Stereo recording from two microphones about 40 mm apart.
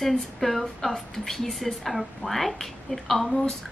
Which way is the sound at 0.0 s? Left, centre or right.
Centre.